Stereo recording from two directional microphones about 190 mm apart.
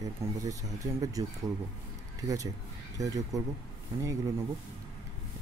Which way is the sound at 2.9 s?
20° right (ahead or behind).